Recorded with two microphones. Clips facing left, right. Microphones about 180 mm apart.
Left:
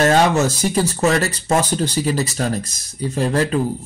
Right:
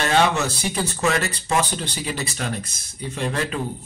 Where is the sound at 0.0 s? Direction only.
40° left (ahead or behind).